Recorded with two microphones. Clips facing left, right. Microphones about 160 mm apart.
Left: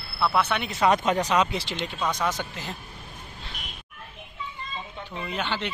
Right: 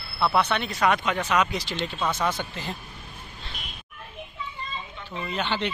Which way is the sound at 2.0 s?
5° right (ahead or behind).